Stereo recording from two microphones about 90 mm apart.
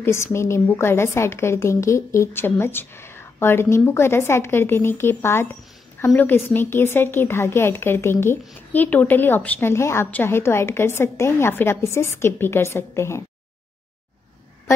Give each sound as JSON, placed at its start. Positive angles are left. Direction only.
{"t": 0.0, "sound": "a woman's voice", "side_deg": 30}